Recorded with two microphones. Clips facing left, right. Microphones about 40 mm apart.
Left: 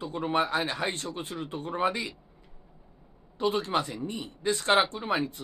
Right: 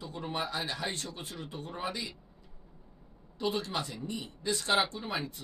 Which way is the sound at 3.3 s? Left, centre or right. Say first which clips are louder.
Left 6 dB; left.